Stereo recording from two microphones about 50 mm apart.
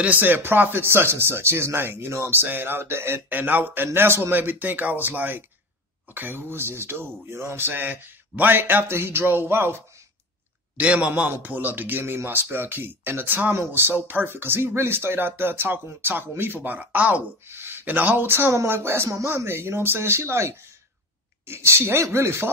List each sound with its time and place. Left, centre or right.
0.0 s speech: right
0.8 s speech: right
3.3 s speech: right
10.8 s a man's voice: right
11.2 s speech: right
12.0 s speech: right
17.5 s a sound: right
17.8 s speech: right